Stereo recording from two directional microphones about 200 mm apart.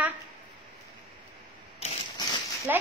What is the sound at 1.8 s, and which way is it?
Ratchet, 30° left (ahead or behind).